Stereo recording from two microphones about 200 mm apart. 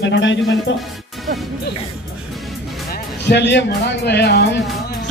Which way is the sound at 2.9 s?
60° left (ahead or behind).